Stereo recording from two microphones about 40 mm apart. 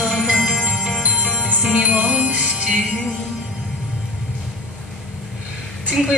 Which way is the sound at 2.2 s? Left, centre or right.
Right.